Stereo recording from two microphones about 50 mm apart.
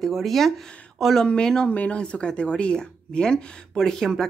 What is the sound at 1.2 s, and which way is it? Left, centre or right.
Speech, centre.